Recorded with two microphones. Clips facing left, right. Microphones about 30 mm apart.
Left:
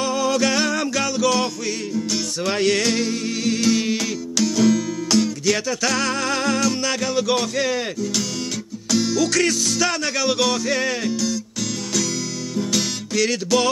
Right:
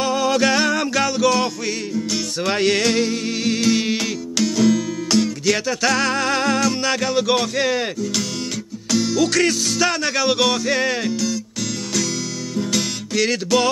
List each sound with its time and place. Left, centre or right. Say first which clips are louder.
0.0 s music: right 2 dB; right
2.4 s music: right 2 dB; right
4.6 s music: right 1 dB; centre
8.9 s music: right 1 dB; centre
9.2 s music: right 2 dB; centre
12.5 s music: right 1 dB; centre